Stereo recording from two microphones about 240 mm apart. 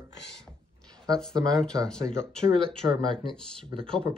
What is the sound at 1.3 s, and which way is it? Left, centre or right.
Speech, centre.